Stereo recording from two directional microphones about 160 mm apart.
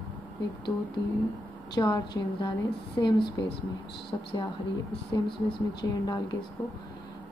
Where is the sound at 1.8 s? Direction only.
25° left (ahead or behind).